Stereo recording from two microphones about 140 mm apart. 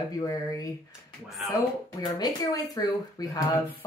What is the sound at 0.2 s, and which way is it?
Speech, 25° left (ahead or behind).